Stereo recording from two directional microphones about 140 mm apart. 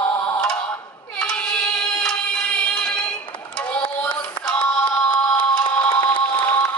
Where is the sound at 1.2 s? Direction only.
5° left (ahead or behind).